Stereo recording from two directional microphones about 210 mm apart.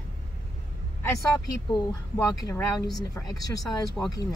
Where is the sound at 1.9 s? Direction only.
15° left (ahead or behind).